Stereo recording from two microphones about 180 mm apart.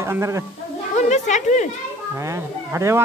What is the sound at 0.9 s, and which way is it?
Speech, 40° left (ahead or behind).